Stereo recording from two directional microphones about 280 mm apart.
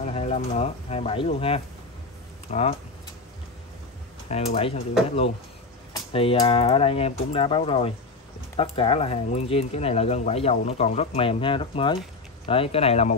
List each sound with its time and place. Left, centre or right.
0.0 s speech: left
4.3 s speech: left